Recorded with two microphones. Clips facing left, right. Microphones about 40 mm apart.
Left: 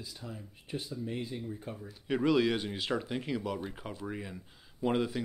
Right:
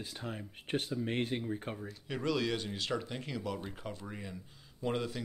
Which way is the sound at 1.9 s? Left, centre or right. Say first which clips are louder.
Left 7 dB; centre.